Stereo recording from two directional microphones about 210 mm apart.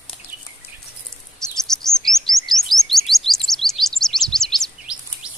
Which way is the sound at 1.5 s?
Centre (ahead or behind).